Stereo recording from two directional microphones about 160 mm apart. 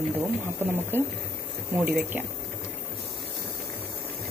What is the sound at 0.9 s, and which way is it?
Speech, 15° right (ahead or behind).